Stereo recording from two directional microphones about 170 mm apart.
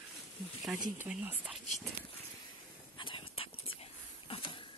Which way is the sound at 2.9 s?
30° left (ahead or behind).